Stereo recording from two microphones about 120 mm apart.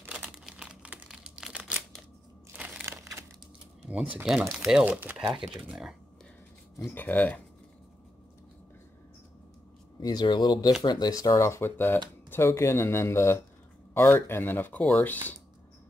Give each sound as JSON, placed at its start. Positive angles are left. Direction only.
{"t": 0.0, "sound": "crumpling", "side_deg": -15}
{"t": 0.5, "sound": "crumpling", "side_deg": -5}
{"t": 2.5, "sound": "crunch", "side_deg": -10}
{"t": 3.0, "sound": "a sound", "side_deg": -25}
{"t": 3.8, "sound": "typing", "side_deg": -10}
{"t": 4.2, "sound": "speech", "side_deg": 0}
{"t": 5.1, "sound": "speech", "side_deg": 0}
{"t": 6.9, "sound": "speech", "side_deg": 15}
{"t": 9.9, "sound": "speech", "side_deg": 35}